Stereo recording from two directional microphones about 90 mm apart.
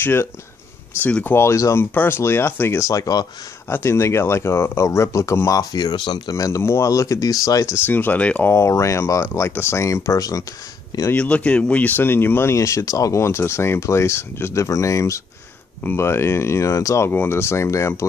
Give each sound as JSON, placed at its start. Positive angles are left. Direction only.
{"t": 0.0, "sound": "speech", "side_deg": 25}
{"t": 3.6, "sound": "speech", "side_deg": 30}
{"t": 5.6, "sound": "speech", "side_deg": 45}
{"t": 6.3, "sound": "speech", "side_deg": 35}
{"t": 7.8, "sound": "speech", "side_deg": 20}
{"t": 8.5, "sound": "speech", "side_deg": 30}
{"t": 11.1, "sound": "speech", "side_deg": 15}